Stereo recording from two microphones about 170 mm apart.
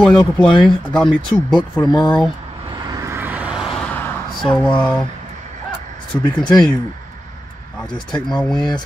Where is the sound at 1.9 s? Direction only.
25° left (ahead or behind).